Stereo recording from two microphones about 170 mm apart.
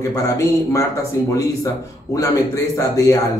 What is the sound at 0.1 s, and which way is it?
Speech, 20° left (ahead or behind).